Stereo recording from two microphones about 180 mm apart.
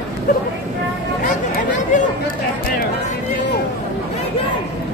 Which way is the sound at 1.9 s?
45° left (ahead or behind).